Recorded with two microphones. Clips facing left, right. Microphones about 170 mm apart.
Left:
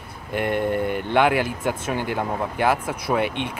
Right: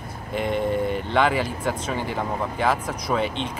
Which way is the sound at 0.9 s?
5° left (ahead or behind).